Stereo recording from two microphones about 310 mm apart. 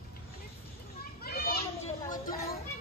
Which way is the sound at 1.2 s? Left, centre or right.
Left.